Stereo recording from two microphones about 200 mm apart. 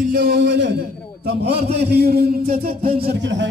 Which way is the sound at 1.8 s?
55° right (ahead or behind).